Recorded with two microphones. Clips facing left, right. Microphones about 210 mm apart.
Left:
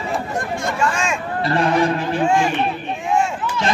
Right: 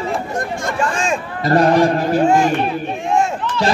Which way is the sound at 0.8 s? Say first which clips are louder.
Right 4 dB; 35° right (ahead or behind).